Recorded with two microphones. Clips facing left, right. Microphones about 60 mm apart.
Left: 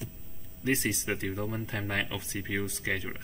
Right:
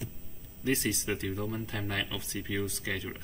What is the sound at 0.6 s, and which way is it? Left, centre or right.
Speech, left.